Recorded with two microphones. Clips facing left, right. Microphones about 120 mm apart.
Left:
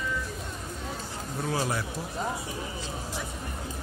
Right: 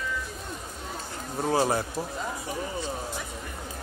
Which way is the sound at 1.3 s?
35° right (ahead or behind).